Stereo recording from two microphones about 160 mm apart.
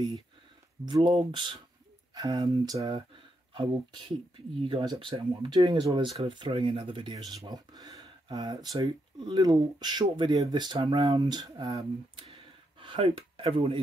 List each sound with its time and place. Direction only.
0.8 s speech: 30° right (ahead or behind)
5.6 s speech: 20° right (ahead or behind); by 13.7 s 35° right (ahead or behind)